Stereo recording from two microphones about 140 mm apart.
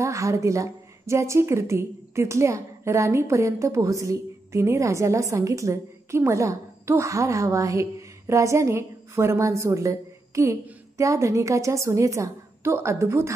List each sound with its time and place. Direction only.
0.0 s a woman's voice: 20° right (ahead or behind)